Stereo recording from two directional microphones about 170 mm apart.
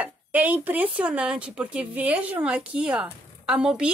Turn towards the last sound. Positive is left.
turn(degrees=-5)  # may be behind; listen again after turning